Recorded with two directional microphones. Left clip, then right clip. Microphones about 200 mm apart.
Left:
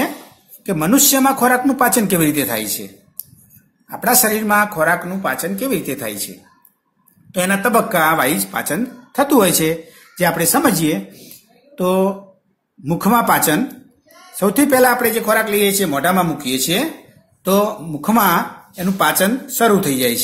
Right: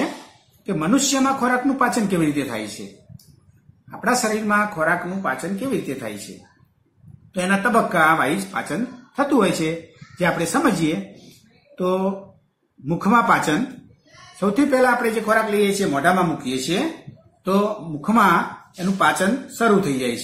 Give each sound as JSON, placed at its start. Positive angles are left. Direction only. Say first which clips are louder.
{"t": 0.7, "sound": "speech", "louder": "left 5 dB", "side_deg": 55}
{"t": 3.9, "sound": "speech", "louder": "left 4 dB", "side_deg": 55}
{"t": 7.3, "sound": "speech", "louder": "left 3 dB", "side_deg": 50}
{"t": 14.4, "sound": "speech", "louder": "left 4 dB", "side_deg": 50}